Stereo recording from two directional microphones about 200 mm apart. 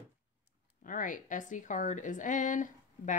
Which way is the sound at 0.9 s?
40° left (ahead or behind).